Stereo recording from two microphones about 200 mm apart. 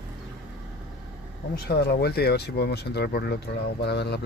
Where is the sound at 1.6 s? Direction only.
55° left (ahead or behind).